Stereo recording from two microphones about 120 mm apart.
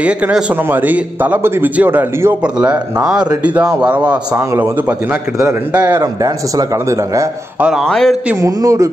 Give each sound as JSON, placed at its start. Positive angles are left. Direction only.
{"t": 0.0, "sound": "a man's voice", "side_deg": -10}
{"t": 5.4, "sound": "a man's voice", "side_deg": -30}
{"t": 7.8, "sound": "a man's voice", "side_deg": 5}
{"t": 8.4, "sound": "a man's voice", "side_deg": -30}